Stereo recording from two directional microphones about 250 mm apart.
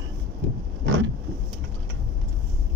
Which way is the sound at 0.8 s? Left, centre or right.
Right.